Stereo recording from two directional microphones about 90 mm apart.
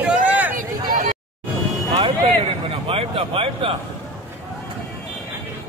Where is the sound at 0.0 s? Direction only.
15° right (ahead or behind).